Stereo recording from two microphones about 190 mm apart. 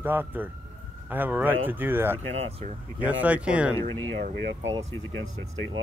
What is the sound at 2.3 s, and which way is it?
Speech, 35° right (ahead or behind).